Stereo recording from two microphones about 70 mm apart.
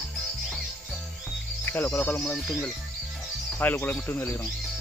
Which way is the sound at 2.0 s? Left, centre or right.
Centre.